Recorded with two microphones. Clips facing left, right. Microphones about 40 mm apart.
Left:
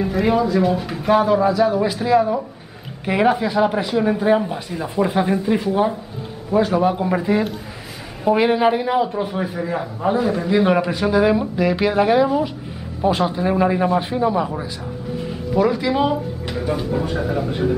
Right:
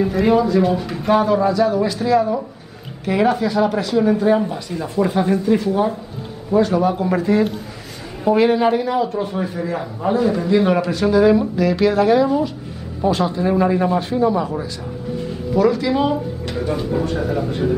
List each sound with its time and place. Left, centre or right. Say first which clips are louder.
0.0 s a man's voice: right 2 dB; centre